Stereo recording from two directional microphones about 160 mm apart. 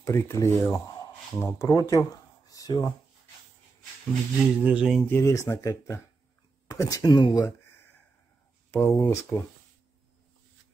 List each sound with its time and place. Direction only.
0.0 s speech: 20° left (ahead or behind)
4.6 s speech: 10° right (ahead or behind)
5.0 s speech: 15° left (ahead or behind)
8.7 s speech: 15° left (ahead or behind)